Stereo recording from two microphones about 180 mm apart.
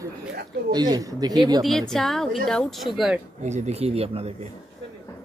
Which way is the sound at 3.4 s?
40° right (ahead or behind).